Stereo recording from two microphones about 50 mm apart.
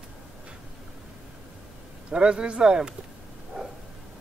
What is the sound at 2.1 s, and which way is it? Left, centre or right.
Speech, centre.